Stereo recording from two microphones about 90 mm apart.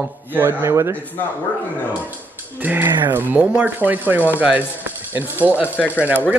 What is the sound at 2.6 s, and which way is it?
A man's voice, 20° right (ahead or behind).